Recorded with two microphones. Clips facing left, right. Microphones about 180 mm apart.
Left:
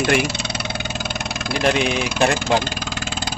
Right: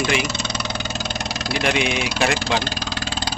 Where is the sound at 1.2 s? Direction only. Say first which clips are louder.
Left 3 dB; 50° left (ahead or behind).